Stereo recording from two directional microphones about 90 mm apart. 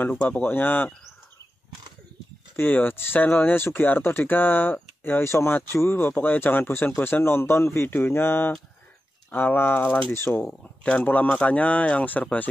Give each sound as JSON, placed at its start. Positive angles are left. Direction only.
{"t": 0.1, "sound": "speech", "side_deg": 10}
{"t": 2.5, "sound": "speech", "side_deg": 20}
{"t": 10.8, "sound": "speech", "side_deg": 10}